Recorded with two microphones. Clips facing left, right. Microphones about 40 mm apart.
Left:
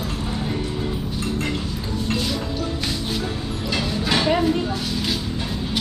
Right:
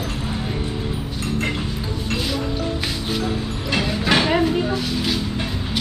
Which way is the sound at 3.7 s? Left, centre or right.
Right.